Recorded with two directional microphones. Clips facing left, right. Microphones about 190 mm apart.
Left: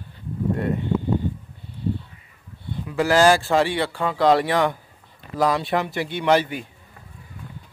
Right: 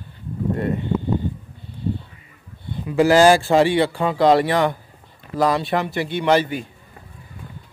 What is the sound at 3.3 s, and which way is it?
Speech, 25° right (ahead or behind).